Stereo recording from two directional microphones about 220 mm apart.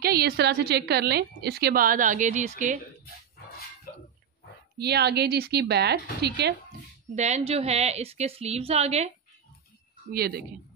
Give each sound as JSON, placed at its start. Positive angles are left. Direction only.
{"t": 0.0, "sound": "a woman's voice", "side_deg": -45}
{"t": 4.7, "sound": "a woman's voice", "side_deg": -50}
{"t": 7.2, "sound": "a woman's voice", "side_deg": -30}
{"t": 10.1, "sound": "a woman's voice", "side_deg": -45}